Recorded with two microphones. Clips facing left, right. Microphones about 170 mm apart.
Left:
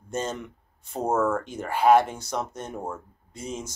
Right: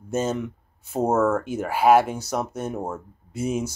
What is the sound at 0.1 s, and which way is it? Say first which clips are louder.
Speech: right 6 dB; 5° right (ahead or behind).